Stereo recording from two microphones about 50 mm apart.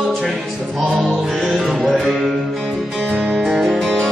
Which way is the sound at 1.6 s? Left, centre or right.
Centre.